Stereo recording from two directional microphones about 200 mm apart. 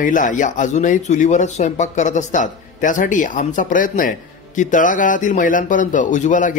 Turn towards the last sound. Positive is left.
turn(degrees=40)  # may be behind; listen again after turning